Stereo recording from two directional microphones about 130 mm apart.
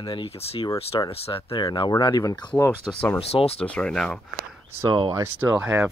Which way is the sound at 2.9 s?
5° left (ahead or behind).